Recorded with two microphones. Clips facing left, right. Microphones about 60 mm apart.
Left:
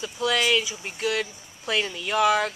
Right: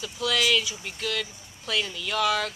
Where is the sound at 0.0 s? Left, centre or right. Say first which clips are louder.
Left 2 dB; centre.